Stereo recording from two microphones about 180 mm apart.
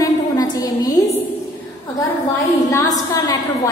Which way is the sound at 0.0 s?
20° left (ahead or behind).